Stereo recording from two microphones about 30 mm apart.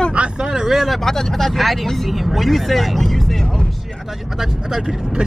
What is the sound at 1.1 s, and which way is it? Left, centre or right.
Speech, centre.